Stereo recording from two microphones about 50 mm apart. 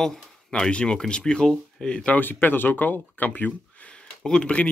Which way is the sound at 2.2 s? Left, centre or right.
Left.